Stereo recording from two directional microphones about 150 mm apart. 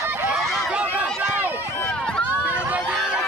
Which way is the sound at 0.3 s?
Centre (ahead or behind).